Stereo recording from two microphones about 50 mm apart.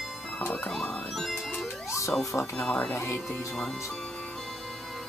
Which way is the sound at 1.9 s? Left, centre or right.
Left.